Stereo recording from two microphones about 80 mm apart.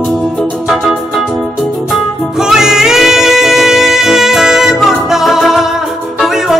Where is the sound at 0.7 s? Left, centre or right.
Centre.